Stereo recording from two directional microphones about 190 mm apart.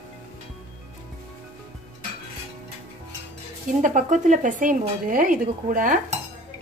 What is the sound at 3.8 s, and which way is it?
Speech, 40° right (ahead or behind).